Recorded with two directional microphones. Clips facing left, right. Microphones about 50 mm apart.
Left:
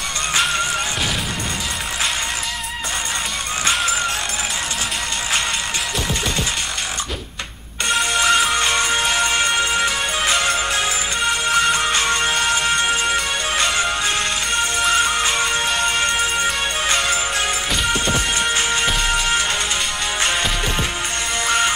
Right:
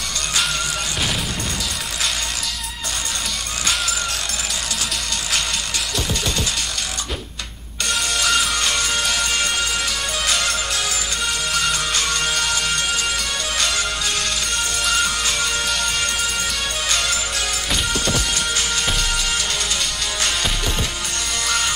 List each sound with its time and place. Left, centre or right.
7.9 s music: left
21.5 s music: left